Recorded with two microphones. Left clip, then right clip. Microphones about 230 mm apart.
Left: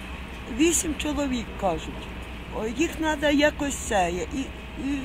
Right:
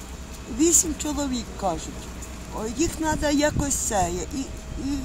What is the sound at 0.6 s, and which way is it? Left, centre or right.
Speech, centre.